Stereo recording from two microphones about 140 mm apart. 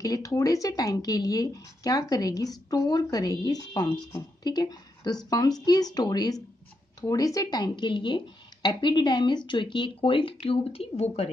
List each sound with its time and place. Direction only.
0.0 s speech: 25° left (ahead or behind); by 11.1 s 45° left (ahead or behind)